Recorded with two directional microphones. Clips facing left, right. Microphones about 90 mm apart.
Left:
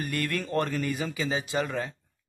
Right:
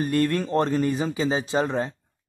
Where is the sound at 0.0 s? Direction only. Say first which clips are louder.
Right 8 dB; 25° right (ahead or behind).